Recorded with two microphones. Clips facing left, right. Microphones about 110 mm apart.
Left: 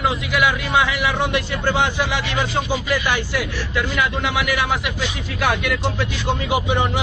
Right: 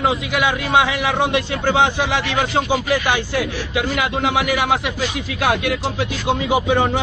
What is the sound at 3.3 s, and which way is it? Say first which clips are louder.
A man's voice: right 2 dB; 40° right (ahead or behind).